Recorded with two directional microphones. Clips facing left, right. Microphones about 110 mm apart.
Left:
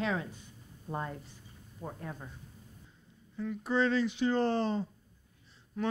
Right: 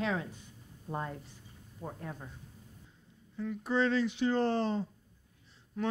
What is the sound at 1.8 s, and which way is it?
Speech, 35° right (ahead or behind).